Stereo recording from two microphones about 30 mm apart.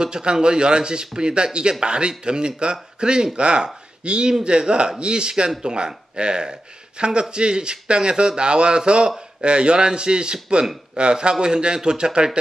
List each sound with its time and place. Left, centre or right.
0.0 s speech: right